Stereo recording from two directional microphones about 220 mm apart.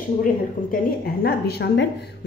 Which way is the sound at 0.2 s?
40° left (ahead or behind).